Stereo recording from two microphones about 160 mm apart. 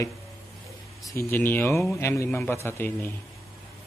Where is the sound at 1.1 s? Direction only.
15° left (ahead or behind).